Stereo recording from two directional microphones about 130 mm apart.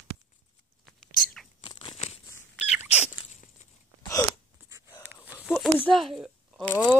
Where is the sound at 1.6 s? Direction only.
40° left (ahead or behind).